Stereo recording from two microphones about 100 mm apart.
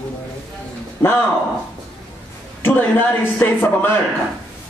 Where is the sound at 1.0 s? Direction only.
20° left (ahead or behind).